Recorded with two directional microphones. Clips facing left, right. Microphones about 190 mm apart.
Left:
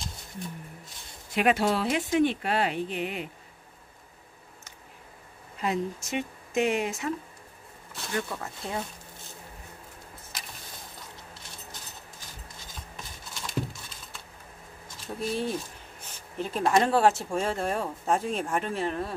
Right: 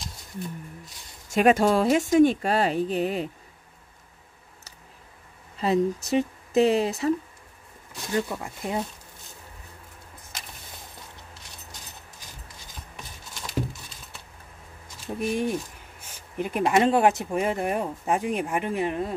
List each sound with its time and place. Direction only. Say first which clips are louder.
1.3 s speech: right 5 dB; 45° right (ahead or behind)
5.6 s speech: right 6 dB; 35° right (ahead or behind)
7.9 s speech: right 5 dB; 15° right (ahead or behind)
15.1 s speech: right 4 dB; 15° right (ahead or behind)